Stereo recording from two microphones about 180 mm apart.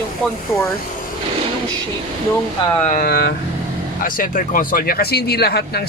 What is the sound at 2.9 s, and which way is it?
Speech, 50° left (ahead or behind).